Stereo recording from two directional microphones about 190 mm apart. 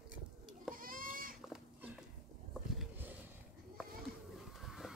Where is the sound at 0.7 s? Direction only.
45° right (ahead or behind).